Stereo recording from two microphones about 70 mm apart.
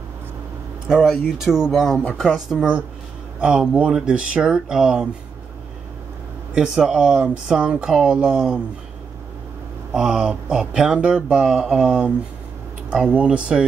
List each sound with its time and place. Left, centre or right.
0.8 s speech: centre
1.7 s speech: centre
2.1 s speech: centre
6.5 s speech: centre
9.9 s speech: centre